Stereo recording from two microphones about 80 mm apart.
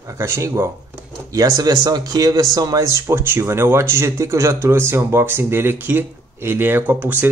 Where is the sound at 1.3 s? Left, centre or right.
Right.